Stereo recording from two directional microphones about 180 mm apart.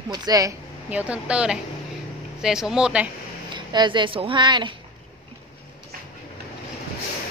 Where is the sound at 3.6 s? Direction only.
25° right (ahead or behind).